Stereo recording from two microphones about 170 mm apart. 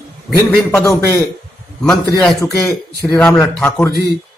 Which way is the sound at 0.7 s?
15° left (ahead or behind).